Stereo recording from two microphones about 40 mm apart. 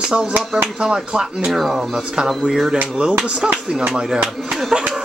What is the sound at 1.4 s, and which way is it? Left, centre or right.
Speech, centre.